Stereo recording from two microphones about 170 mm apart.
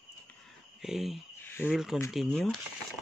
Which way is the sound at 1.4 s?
15° left (ahead or behind).